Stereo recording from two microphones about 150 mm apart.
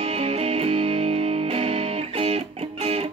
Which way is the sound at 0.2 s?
40° right (ahead or behind).